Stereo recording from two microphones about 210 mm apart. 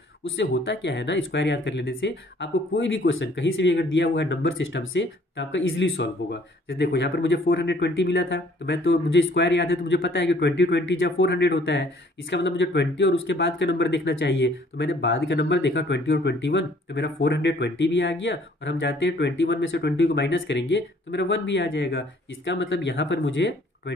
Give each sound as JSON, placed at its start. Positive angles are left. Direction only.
{"t": 0.4, "sound": "speech", "side_deg": 55}